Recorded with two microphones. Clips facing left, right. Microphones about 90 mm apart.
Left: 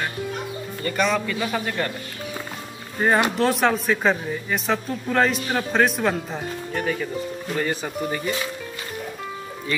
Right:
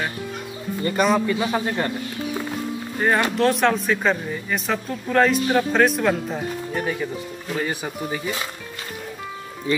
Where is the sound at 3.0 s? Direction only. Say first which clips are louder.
Even; 5° left (ahead or behind).